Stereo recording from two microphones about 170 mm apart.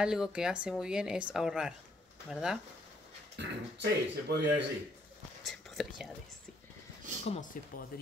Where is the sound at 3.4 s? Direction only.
80° right.